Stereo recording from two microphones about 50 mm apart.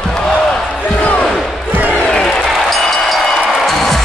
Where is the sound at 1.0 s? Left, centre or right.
Left.